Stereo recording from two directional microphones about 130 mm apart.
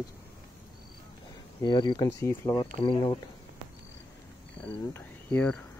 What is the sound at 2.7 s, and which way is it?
Speech, 40° left (ahead or behind).